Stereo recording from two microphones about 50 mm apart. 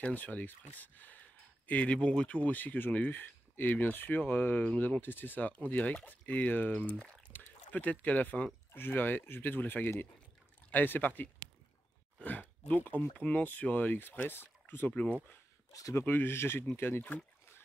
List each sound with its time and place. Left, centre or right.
0.0 s speech: left
14.9 s speech: left
15.9 s speech: left